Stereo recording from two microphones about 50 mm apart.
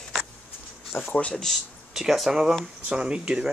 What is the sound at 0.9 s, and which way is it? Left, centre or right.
Speech, left.